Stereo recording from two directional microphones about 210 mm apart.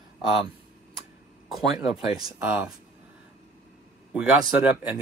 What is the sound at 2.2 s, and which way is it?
Speech, 5° right (ahead or behind).